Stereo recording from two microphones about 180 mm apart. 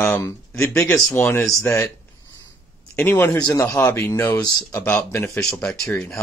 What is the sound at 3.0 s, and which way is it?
Speech, 10° left (ahead or behind).